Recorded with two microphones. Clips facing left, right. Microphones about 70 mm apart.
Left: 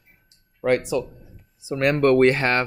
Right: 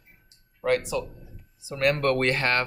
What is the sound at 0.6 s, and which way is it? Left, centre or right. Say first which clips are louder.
Speech: left 4 dB; left.